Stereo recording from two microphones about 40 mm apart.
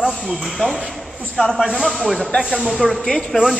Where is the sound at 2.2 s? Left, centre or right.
Left.